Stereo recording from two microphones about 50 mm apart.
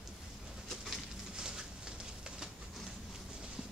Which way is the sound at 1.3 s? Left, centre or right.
Centre.